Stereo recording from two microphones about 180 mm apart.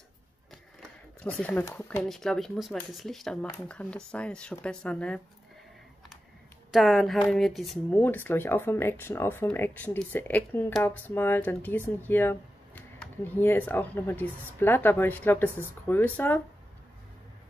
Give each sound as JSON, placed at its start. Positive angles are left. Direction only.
{"t": 1.2, "sound": "speech", "side_deg": 10}
{"t": 2.0, "sound": "speech", "side_deg": 0}
{"t": 6.7, "sound": "speech", "side_deg": 0}
{"t": 8.0, "sound": "speech", "side_deg": 10}